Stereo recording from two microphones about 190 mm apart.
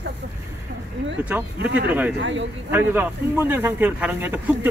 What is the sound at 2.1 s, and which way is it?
Speech, 70° right (ahead or behind).